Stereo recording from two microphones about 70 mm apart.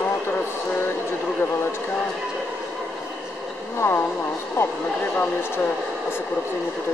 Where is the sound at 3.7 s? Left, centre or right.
Left.